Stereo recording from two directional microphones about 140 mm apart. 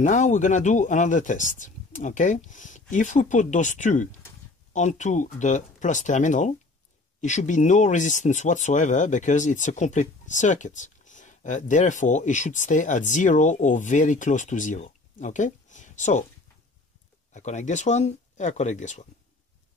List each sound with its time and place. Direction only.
0.0 s speech: 60° left (ahead or behind)
17.3 s speech: 55° left (ahead or behind)